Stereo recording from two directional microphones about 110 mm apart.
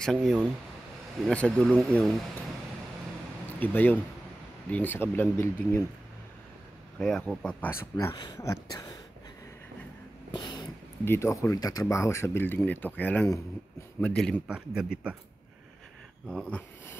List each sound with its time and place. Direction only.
0.0 s speech: 5° left (ahead or behind)
3.5 s speech: 15° left (ahead or behind)
7.0 s speech: 5° left (ahead or behind)
7.8 s speech: 20° left (ahead or behind)
8.1 s a sound: 40° left (ahead or behind)
10.3 s a sound: 40° left (ahead or behind)
11.1 s speech: 30° left (ahead or behind); by 14.4 s 10° left (ahead or behind)
14.5 s speech: 5° right (ahead or behind)
16.3 s speech: 10° left (ahead or behind)